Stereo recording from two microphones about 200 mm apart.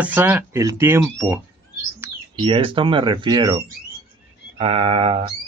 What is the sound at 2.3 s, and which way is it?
Speech, 25° right (ahead or behind).